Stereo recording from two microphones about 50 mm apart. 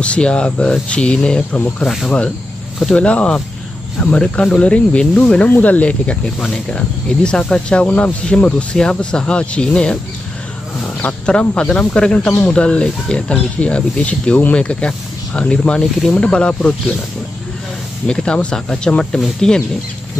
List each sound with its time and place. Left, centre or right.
0.0 s speech: left
11.0 s speech: left
18.0 s speech: centre